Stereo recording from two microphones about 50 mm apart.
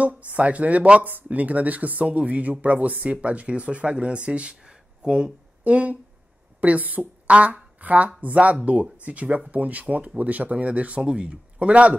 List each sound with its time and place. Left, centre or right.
0.0 s speech: right
5.6 s speech: right